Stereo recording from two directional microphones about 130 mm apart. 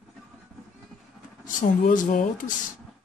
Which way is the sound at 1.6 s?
90° left.